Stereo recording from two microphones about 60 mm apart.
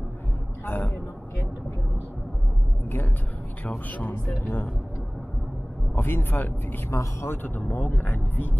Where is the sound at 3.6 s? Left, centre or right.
Left.